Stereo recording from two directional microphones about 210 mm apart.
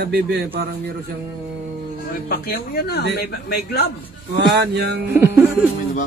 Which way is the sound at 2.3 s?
45° left (ahead or behind).